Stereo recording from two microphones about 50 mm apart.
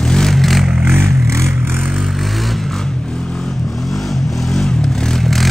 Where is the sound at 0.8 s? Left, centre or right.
Right.